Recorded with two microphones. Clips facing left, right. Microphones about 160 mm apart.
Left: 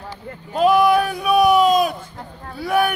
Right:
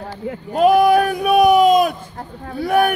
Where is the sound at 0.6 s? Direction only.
50° right (ahead or behind).